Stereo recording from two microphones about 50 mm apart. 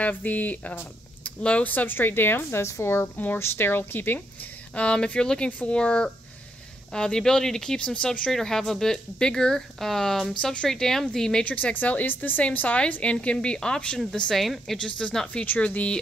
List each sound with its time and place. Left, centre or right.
0.0 s speech: left
4.7 s a woman's voice: left
8.3 s speech: centre
10.4 s speech: centre
11.4 s a woman's voice: left; by 13.7 s centre
14.3 s a woman's voice: centre
14.8 s a woman's voice: centre